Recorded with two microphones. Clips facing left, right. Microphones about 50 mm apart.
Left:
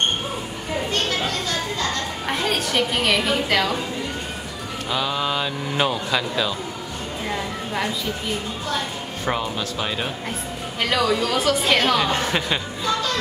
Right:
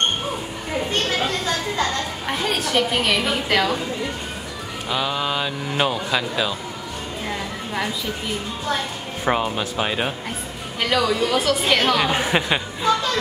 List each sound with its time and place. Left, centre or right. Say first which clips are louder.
1.2 s a sound: right 2 dB; right
2.2 s a woman's voice: left 1 dB; centre
4.8 s speech: even; centre
7.2 s a sound: left 2 dB; centre
9.2 s speech: right 4 dB; centre
10.8 s a woman's voice: right 1 dB; centre
12.0 s speech: right 2 dB; centre